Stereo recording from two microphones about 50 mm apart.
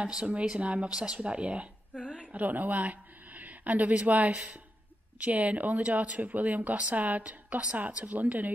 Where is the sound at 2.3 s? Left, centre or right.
Right.